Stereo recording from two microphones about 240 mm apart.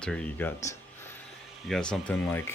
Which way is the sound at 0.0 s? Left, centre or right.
Centre.